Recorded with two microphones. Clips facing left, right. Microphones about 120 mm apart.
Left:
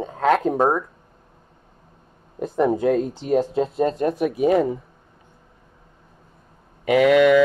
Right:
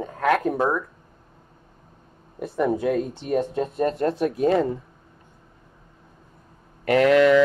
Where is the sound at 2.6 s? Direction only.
30° left (ahead or behind).